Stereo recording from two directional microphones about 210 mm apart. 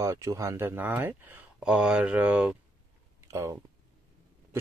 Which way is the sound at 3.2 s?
15° right (ahead or behind).